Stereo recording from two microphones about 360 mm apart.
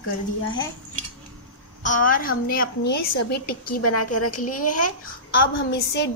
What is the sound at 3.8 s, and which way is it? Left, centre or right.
Speech, left.